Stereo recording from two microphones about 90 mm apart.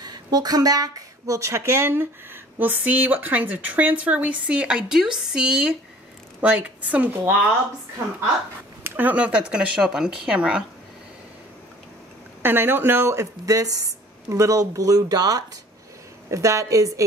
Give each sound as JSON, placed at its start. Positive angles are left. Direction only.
{"t": 0.0, "sound": "speech", "side_deg": -50}
{"t": 8.8, "sound": "speech", "side_deg": -20}
{"t": 12.4, "sound": "speech", "side_deg": -25}